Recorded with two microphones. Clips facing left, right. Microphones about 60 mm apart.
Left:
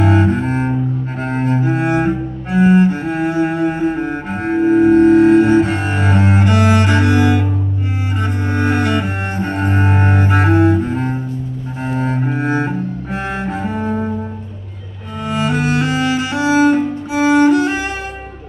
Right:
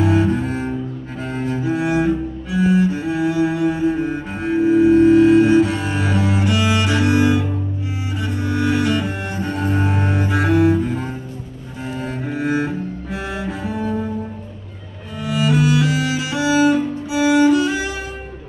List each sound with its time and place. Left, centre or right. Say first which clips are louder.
0.0 s double bass: left 2 dB; left
1.2 s cello: left 4 dB; left
8.5 s cello: left 1 dB; left
15.2 s cello: even; left